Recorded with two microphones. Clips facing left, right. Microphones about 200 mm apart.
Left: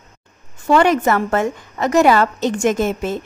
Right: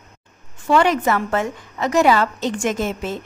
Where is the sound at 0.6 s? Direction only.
45° left (ahead or behind).